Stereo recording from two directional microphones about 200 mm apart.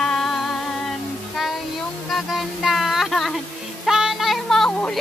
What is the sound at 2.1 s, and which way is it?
Music, centre (ahead or behind).